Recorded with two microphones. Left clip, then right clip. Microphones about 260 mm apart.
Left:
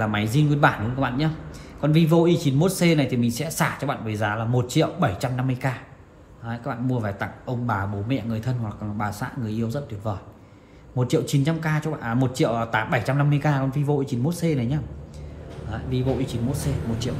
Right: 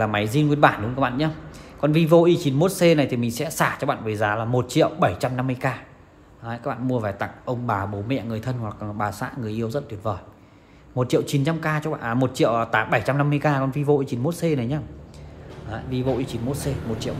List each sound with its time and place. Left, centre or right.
0.0 s speech: right